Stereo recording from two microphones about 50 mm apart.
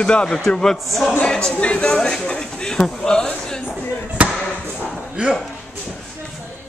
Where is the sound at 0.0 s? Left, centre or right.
Left.